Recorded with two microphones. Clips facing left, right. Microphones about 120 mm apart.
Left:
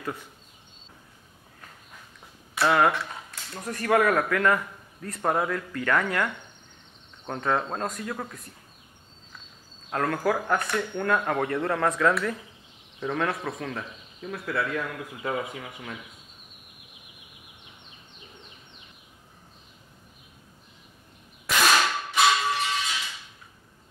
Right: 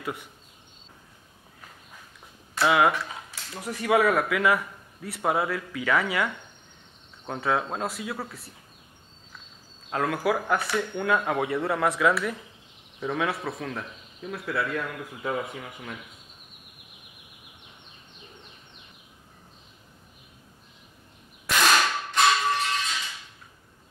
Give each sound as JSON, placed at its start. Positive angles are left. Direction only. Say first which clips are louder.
{"t": 0.0, "sound": "speech", "louder": "even", "side_deg": -15}
{"t": 2.5, "sound": "speech", "louder": "even", "side_deg": 0}
{"t": 9.8, "sound": "speech", "louder": "even", "side_deg": -5}
{"t": 21.5, "sound": "whip", "louder": "even", "side_deg": 0}